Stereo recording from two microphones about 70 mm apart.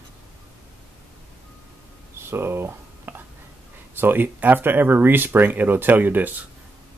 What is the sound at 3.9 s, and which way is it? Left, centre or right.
Speech, right.